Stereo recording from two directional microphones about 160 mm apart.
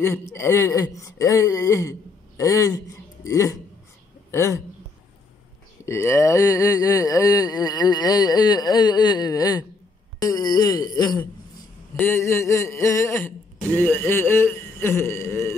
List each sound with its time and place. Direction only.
0.0 s a woman's voice: 15° left (ahead or behind)
5.9 s a man's voice: 15° left (ahead or behind)